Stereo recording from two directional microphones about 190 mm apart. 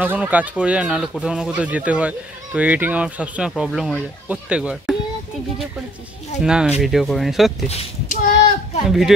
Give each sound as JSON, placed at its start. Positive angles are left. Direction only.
{"t": 0.0, "sound": "speech", "side_deg": -5}
{"t": 6.4, "sound": "speech", "side_deg": -5}
{"t": 7.6, "sound": "child singing", "side_deg": 40}
{"t": 8.8, "sound": "speech", "side_deg": 0}